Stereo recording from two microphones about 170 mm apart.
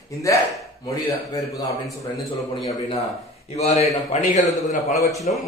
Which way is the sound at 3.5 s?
40° left (ahead or behind).